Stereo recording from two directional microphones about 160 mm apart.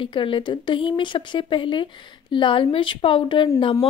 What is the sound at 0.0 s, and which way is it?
Speech, 30° left (ahead or behind).